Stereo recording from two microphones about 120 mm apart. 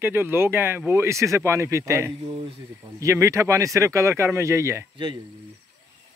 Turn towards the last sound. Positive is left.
turn(degrees=-25)  # may be behind; listen again after turning